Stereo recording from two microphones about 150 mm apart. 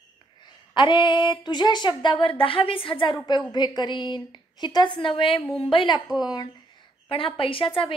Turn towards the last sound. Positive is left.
turn(degrees=35)  # may be behind; listen again after turning